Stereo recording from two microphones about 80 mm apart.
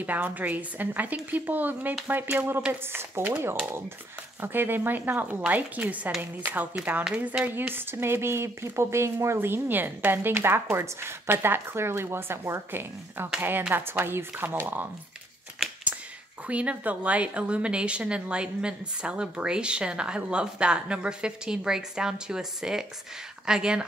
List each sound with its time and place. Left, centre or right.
0.0 s a woman's voice: right
16.4 s a woman's voice: centre